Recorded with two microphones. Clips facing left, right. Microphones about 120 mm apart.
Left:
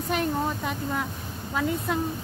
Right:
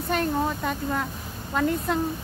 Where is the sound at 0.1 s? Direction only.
10° left (ahead or behind).